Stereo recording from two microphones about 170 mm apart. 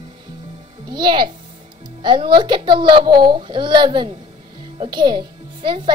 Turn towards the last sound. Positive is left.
turn(degrees=-30)  # may be behind; listen again after turning